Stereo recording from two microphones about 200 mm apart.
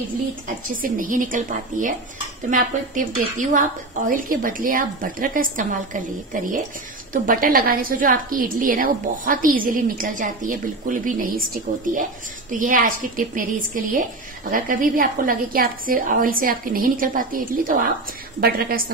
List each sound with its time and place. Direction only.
0.7 s a woman's voice: 45° right (ahead or behind)